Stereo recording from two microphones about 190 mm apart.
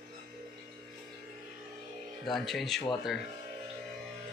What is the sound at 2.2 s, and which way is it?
Speech, centre (ahead or behind).